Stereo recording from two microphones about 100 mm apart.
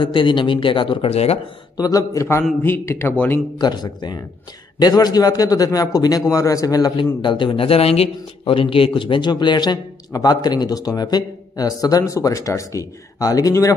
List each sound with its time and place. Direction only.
0.0 s speech: 55° left (ahead or behind); by 1.4 s 90° left
1.8 s a man's voice: 35° left (ahead or behind); by 3.3 s 20° left (ahead or behind)
3.5 s a man's voice: 45° left (ahead or behind)
7.2 s a man's voice: 55° left (ahead or behind); by 13.7 s 35° left (ahead or behind)